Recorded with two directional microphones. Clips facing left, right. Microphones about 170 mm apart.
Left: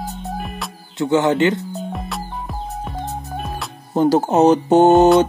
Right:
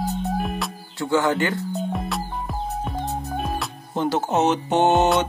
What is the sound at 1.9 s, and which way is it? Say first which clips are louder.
Music: right 1 dB; centre (ahead or behind).